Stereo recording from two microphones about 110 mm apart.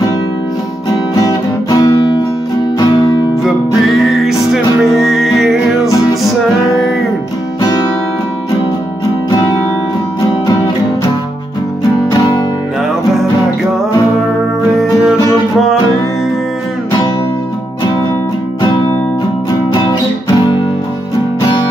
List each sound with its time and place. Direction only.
1.1 s guitar: 30° left (ahead or behind)
4.0 s music: centre (ahead or behind)